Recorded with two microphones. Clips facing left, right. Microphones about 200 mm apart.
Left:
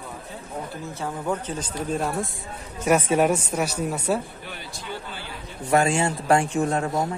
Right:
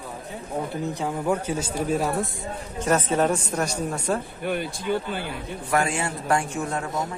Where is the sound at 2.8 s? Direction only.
10° left (ahead or behind).